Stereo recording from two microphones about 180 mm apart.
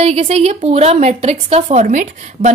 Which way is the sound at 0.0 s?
35° right (ahead or behind).